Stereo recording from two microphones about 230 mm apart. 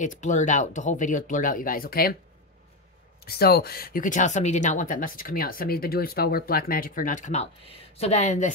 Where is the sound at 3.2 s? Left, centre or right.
Left.